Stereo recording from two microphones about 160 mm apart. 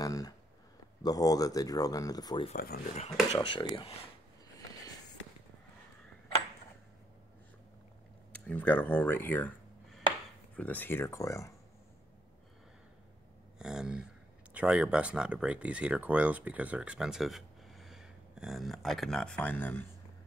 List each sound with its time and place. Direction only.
0.0 s a sound: 20° left (ahead or behind)
1.0 s speech: 20° left (ahead or behind)
2.5 s speech: 70° left (ahead or behind)
3.3 s speech: 30° left (ahead or behind)
8.3 s speech: 10° left (ahead or behind)
10.5 s speech: 10° left (ahead or behind)
13.6 s speech: 5° right (ahead or behind); by 19.9 s 10° left (ahead or behind)